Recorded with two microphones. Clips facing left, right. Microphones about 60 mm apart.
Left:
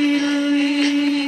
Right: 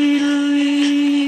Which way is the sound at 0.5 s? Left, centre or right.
Left.